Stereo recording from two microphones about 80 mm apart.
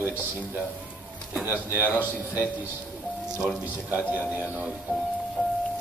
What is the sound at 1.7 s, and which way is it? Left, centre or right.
Speech, right.